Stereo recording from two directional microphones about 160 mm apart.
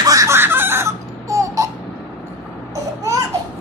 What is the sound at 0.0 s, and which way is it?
Crying, 20° right (ahead or behind).